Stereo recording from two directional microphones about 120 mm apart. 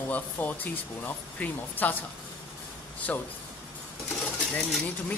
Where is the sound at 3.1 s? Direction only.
10° left (ahead or behind).